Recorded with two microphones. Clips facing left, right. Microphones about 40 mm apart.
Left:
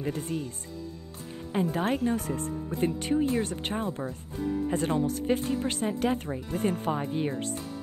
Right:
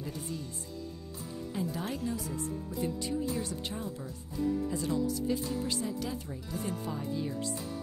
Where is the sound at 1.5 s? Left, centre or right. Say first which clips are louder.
Left 9 dB; left.